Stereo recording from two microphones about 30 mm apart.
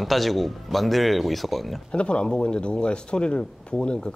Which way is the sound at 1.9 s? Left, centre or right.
Left.